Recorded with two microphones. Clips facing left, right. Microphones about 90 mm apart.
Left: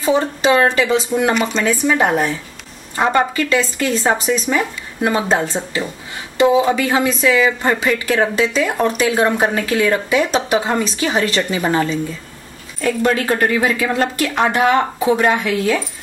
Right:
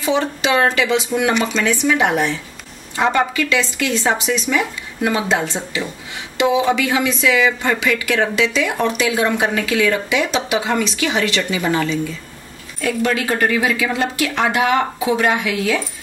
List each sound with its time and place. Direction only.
0.0 s speech: 40° left (ahead or behind)
6.7 s speech: 35° left (ahead or behind)